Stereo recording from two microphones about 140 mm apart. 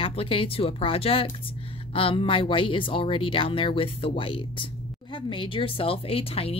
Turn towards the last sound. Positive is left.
turn(degrees=45)  # may be behind; listen again after turning